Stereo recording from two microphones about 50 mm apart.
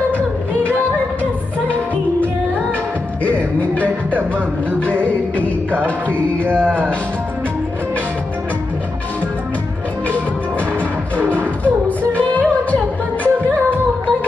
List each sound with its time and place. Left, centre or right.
3.3 s music: left
5.0 s music: left
5.9 s speech: left
11.1 s music: left